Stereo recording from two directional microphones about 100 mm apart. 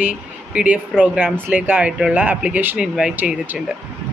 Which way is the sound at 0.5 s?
15° right (ahead or behind).